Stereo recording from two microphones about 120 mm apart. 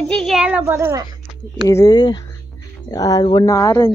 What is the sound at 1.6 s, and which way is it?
Speech, 30° left (ahead or behind).